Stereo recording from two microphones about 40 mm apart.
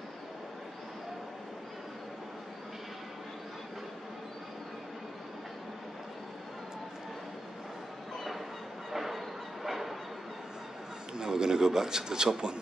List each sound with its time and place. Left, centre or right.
8.9 s bow-wow: centre
11.1 s a man's voice: centre